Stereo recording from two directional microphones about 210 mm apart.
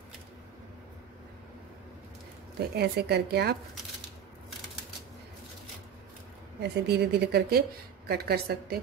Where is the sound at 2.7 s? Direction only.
50° right (ahead or behind).